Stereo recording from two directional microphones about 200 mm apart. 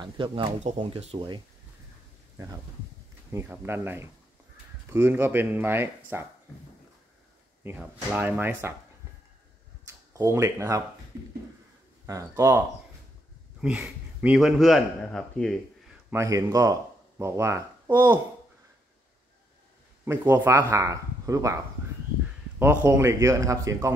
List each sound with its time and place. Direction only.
0.0 s speech: 25° right (ahead or behind)
3.3 s speech: 10° right (ahead or behind)
7.6 s speech: 10° right (ahead or behind)
10.1 s speech: 15° right (ahead or behind)
12.1 s a man's voice: 15° right (ahead or behind); by 15.5 s 5° left (ahead or behind)
16.1 s speech: 15° right (ahead or behind)
20.1 s speech: 15° right (ahead or behind)
22.6 s speech: 10° right (ahead or behind)